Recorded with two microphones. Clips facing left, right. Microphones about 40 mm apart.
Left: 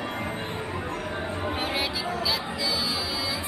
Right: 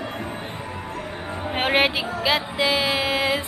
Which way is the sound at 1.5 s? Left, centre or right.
Right.